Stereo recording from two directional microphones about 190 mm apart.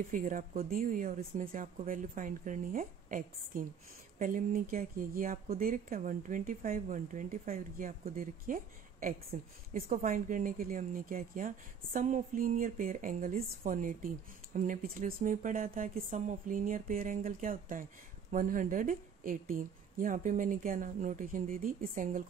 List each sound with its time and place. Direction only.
0.1 s speech: 45° right (ahead or behind)